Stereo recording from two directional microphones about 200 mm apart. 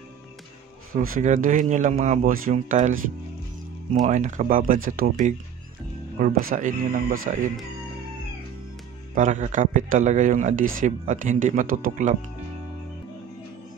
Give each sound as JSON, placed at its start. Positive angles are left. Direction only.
{"t": 0.9, "sound": "speech", "side_deg": -45}
{"t": 4.0, "sound": "speech", "side_deg": -40}
{"t": 9.1, "sound": "speech", "side_deg": -40}